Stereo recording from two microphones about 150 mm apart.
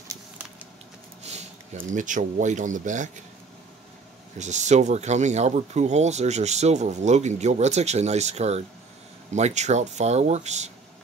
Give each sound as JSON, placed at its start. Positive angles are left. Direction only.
{"t": 1.2, "sound": "speech", "side_deg": -45}
{"t": 4.4, "sound": "speech", "side_deg": -50}